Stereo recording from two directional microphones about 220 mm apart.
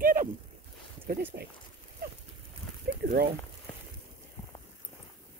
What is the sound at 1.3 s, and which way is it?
Speech, 45° right (ahead or behind).